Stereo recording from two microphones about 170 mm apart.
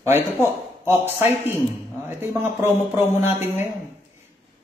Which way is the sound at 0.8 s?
15° right (ahead or behind).